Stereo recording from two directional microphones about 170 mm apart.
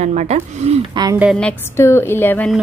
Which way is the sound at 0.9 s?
25° right (ahead or behind).